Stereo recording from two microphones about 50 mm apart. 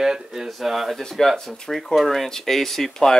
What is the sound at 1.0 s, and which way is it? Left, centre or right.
Speech, centre.